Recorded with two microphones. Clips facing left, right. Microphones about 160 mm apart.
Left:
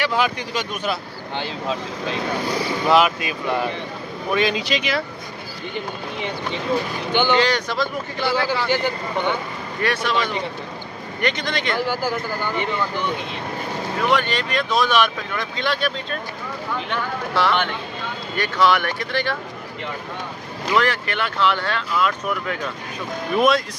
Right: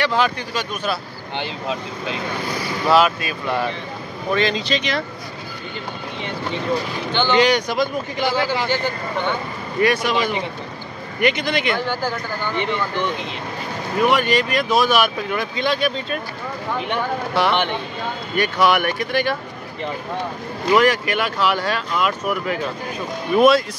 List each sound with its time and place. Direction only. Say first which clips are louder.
0.0 s speech: right 2 dB; 10° left (ahead or behind)
2.9 s speech: right 1 dB; 20° left (ahead or behind)
7.1 s speech: left 1 dB; 10° left (ahead or behind)
7.3 s speech: right 3 dB; 15° right (ahead or behind)
9.8 s speech: right 4 dB; 10° right (ahead or behind)
11.8 s speech: left 1 dB; 10° left (ahead or behind)
14.1 s speech: right 3 dB; 10° right (ahead or behind)
20.7 s speech: right 5 dB; 10° right (ahead or behind)